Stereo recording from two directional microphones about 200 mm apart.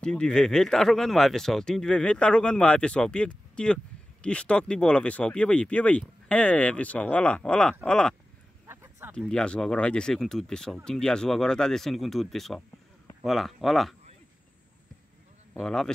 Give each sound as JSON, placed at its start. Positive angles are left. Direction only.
{"t": 0.0, "sound": "speech", "side_deg": 5}
{"t": 8.6, "sound": "a sound", "side_deg": -10}
{"t": 9.3, "sound": "speech", "side_deg": 5}
{"t": 15.5, "sound": "speech", "side_deg": 5}